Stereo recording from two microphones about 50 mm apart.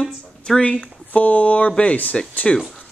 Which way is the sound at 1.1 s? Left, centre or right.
Left.